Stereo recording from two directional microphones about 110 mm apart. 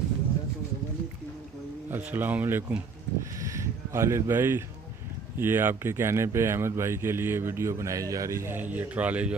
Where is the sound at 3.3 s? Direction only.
30° right (ahead or behind).